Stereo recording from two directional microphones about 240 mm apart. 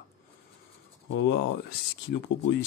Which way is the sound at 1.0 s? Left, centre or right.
Left.